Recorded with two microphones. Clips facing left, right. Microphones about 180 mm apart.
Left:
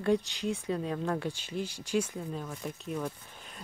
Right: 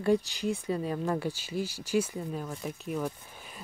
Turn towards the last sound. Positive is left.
turn(degrees=-5)  # may be behind; listen again after turning